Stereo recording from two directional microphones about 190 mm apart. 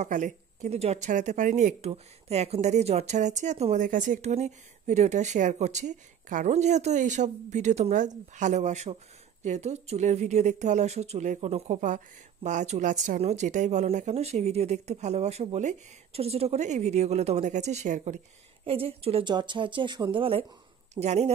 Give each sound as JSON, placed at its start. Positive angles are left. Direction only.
{"t": 0.0, "sound": "speech", "side_deg": -40}
{"t": 18.7, "sound": "speech", "side_deg": -30}